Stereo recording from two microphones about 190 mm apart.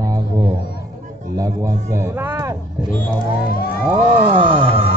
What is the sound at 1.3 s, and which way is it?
A man's voice, 15° right (ahead or behind).